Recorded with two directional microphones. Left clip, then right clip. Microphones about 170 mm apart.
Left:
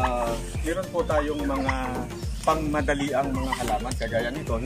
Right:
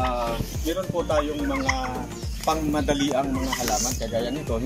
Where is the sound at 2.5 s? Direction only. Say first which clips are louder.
Even; centre (ahead or behind).